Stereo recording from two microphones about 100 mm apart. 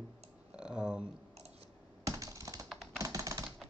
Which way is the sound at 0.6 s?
10° right (ahead or behind).